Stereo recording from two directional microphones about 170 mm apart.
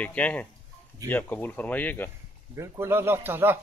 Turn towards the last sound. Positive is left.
turn(degrees=-15)  # may be behind; listen again after turning